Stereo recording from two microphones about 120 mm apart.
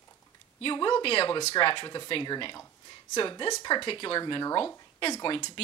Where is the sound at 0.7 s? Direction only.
35° left (ahead or behind).